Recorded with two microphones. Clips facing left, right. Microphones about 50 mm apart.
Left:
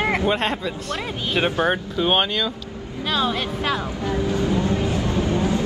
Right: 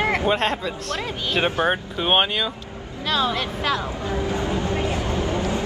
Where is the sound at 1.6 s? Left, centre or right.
Centre.